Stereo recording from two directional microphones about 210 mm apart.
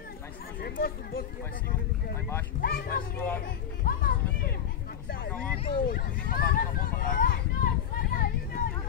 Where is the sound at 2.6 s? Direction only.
45° left (ahead or behind).